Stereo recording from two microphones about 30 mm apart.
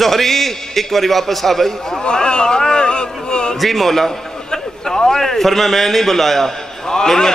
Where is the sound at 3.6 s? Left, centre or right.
Centre.